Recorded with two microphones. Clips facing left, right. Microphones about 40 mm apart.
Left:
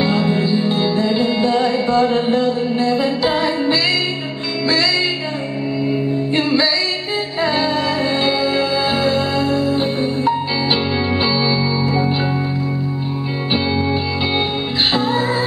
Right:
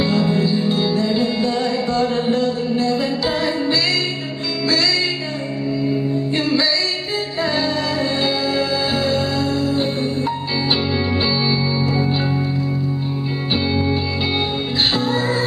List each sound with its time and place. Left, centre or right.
0.0 s music: centre
5.9 s music: centre
15.0 s music: centre